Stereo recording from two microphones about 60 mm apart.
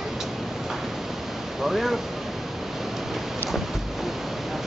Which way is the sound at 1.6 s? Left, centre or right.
Centre.